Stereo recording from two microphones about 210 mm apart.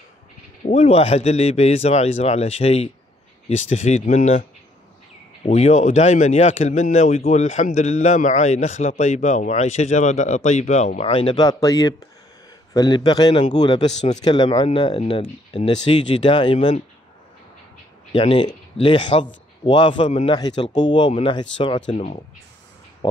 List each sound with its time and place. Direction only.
0.7 s speech: 30° left (ahead or behind)
5.5 s speech: 30° left (ahead or behind)
13.8 s speech: 30° left (ahead or behind)
18.1 s speech: 25° left (ahead or behind)
20.3 s speech: 20° left (ahead or behind)